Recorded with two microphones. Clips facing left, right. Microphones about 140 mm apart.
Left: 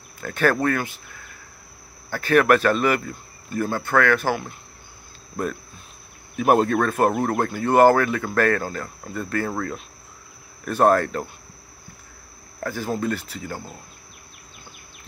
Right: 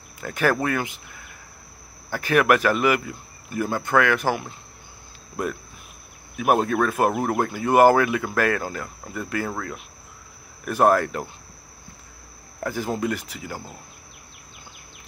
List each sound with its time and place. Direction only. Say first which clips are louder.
0.2 s speech: left 2 dB; 15° right (ahead or behind)
6.4 s speech: left 2 dB; 5° right (ahead or behind)
12.6 s speech: even; 20° right (ahead or behind)